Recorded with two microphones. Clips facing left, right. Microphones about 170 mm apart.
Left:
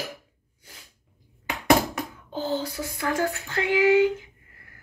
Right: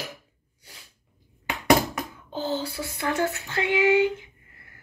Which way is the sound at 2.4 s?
45° left (ahead or behind).